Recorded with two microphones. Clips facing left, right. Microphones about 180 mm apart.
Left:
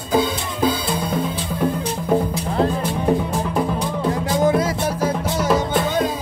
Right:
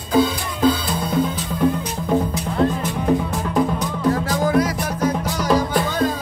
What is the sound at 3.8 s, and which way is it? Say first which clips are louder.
Music: right 1 dB; 25° left (ahead or behind).